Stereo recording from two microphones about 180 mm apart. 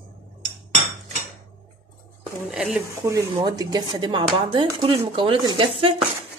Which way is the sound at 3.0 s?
20° right (ahead or behind).